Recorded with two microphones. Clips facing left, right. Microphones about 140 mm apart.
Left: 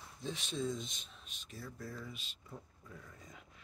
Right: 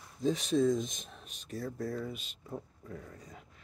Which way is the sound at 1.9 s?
50° right (ahead or behind).